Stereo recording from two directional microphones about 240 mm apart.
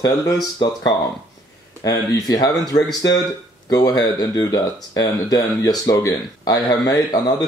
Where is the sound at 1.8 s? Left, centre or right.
Centre.